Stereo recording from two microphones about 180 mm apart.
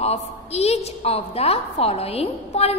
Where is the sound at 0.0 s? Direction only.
35° left (ahead or behind).